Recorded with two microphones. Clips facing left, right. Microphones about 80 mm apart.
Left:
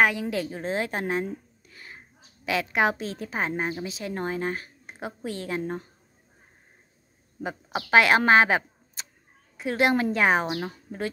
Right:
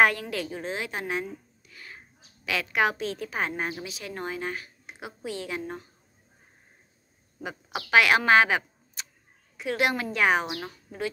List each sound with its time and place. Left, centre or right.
0.2 s a woman's voice: left
7.4 s a woman's voice: left